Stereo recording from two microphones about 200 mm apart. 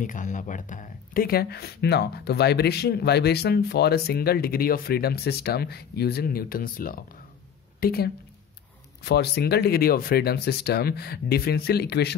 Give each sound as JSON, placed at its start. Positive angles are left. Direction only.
{"t": 0.0, "sound": "speech", "side_deg": 40}